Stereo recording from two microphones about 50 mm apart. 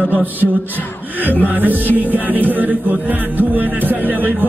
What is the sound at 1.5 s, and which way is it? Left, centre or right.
Music, right.